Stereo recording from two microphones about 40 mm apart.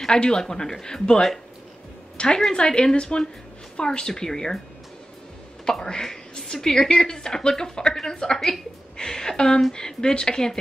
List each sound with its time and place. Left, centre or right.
0.0 s a woman's voice: centre
5.7 s speech: centre